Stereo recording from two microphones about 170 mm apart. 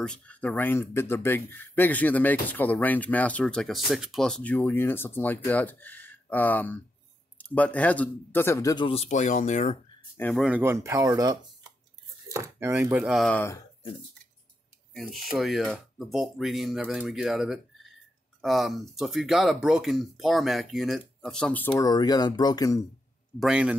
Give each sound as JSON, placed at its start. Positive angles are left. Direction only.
{"t": 0.0, "sound": "speech", "side_deg": 5}
{"t": 8.8, "sound": "speech", "side_deg": 35}
{"t": 10.3, "sound": "speech", "side_deg": -5}
{"t": 12.9, "sound": "speech", "side_deg": 0}
{"t": 15.3, "sound": "speech", "side_deg": 0}
{"t": 21.8, "sound": "speech", "side_deg": 25}
{"t": 23.4, "sound": "speech", "side_deg": -5}